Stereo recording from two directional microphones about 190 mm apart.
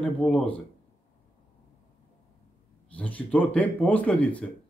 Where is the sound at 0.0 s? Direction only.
5° left (ahead or behind).